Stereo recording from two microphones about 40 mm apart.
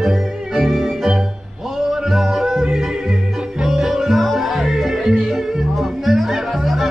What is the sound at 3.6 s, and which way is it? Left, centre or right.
Music, centre.